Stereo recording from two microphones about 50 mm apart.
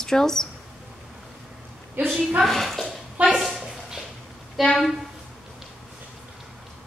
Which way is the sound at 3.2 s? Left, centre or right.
Right.